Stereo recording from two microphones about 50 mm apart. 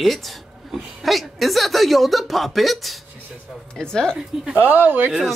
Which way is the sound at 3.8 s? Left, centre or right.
Centre.